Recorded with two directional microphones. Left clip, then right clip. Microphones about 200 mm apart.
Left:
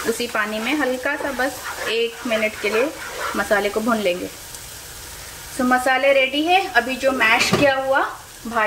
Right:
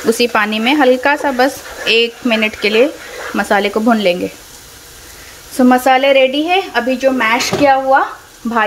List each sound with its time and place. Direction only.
0.2 s speech: 50° right (ahead or behind)
5.7 s speech: 50° right (ahead or behind)